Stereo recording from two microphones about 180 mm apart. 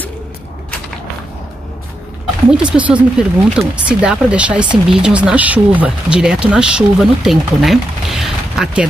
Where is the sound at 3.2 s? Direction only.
5° right (ahead or behind).